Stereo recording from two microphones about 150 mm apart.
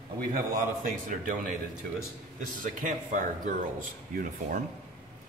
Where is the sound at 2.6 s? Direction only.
65° right (ahead or behind).